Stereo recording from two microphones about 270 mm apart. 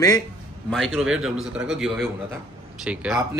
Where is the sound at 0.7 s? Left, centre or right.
Centre.